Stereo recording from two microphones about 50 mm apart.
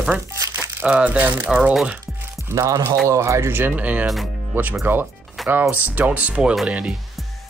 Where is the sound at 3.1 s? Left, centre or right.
Right.